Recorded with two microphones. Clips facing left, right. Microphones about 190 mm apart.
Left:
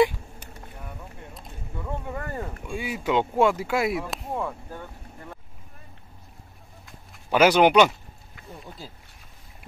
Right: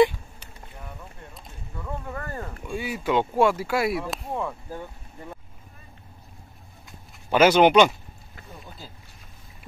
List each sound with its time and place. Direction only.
0.8 s a sound: centre (ahead or behind)
1.8 s speech: 10° left (ahead or behind)
4.0 s speech: centre (ahead or behind)
7.2 s speech: 10° left (ahead or behind)